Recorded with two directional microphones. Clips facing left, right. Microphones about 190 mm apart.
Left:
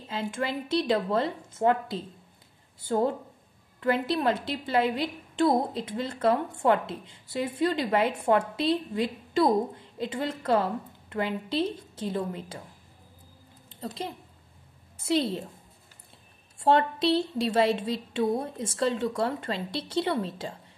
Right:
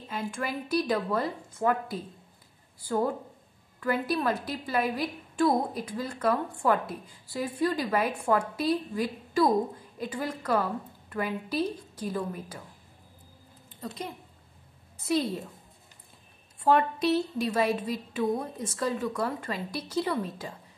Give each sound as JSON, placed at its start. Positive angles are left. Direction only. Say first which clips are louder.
{"t": 0.1, "sound": "a woman's voice", "louder": "left 2 dB", "side_deg": 25}
{"t": 13.7, "sound": "a woman's voice", "louder": "left 2 dB", "side_deg": 30}
{"t": 16.6, "sound": "a woman's voice", "louder": "left 1 dB", "side_deg": 30}